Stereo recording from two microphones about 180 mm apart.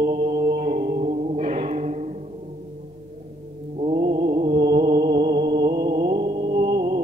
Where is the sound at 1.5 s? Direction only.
35° right (ahead or behind).